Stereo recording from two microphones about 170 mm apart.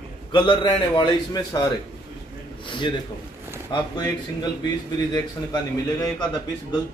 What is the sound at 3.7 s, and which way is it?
Speech, 25° left (ahead or behind).